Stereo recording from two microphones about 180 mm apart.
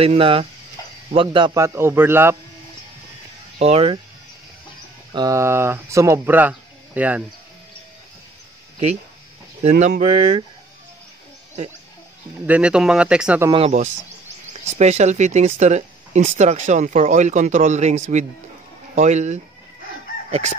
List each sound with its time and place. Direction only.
0.0 s a man's voice: 30° right (ahead or behind)
1.6 s speech: 15° right (ahead or behind)
3.5 s speech: 35° right (ahead or behind)
5.1 s speech: 20° right (ahead or behind)
9.6 s speech: 40° right (ahead or behind)
12.4 s speech: 5° right (ahead or behind)
13.5 s speech: 35° right (ahead or behind)
20.2 s chicken: 40° right (ahead or behind)